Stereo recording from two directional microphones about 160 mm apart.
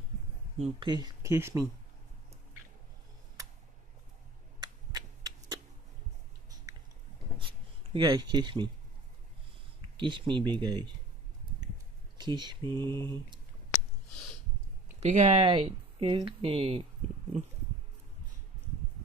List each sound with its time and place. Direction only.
0.6 s speech: 30° right (ahead or behind)
4.6 s a sound: 25° right (ahead or behind)
7.3 s writing: 30° right (ahead or behind)
9.9 s speech: 30° right (ahead or behind)
12.2 s speech: 25° right (ahead or behind)
12.8 s mantra: 15° left (ahead or behind)
15.0 s speech: 45° right (ahead or behind)